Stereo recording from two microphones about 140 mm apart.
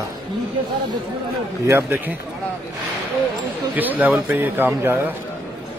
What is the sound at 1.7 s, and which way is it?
Speech, 15° right (ahead or behind).